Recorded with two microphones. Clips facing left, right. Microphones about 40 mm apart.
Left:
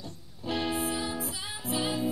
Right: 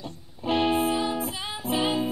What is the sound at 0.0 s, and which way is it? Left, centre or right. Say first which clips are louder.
Music: right 6 dB; right.